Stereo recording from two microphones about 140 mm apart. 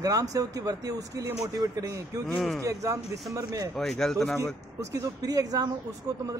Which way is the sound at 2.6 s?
25° right (ahead or behind).